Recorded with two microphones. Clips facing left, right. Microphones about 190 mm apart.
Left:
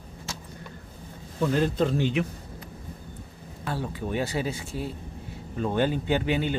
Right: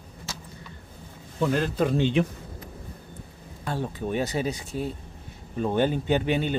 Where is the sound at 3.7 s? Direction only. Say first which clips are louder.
Right 2 dB; 20° right (ahead or behind).